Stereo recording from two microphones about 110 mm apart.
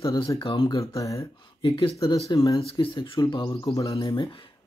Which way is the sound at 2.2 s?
35° left (ahead or behind).